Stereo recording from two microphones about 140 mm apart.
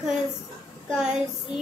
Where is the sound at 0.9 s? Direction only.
5° right (ahead or behind).